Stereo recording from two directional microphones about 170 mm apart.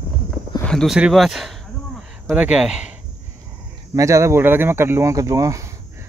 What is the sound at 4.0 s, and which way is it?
Speech, 15° right (ahead or behind).